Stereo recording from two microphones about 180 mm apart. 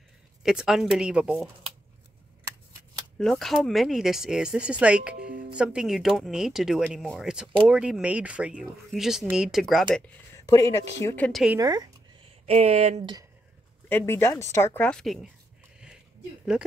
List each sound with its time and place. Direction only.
0.4 s speech: 5° right (ahead or behind)
3.2 s speech: centre (ahead or behind)
10.5 s speech: 20° left (ahead or behind)
11.6 s speech: 20° right (ahead or behind)
12.4 s speech: 35° right (ahead or behind)
13.8 s speech: 10° left (ahead or behind)